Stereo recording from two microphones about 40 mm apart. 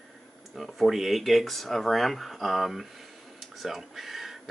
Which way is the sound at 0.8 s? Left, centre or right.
Centre.